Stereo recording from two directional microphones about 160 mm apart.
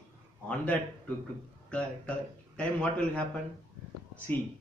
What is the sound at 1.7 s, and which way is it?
Speech, 5° left (ahead or behind).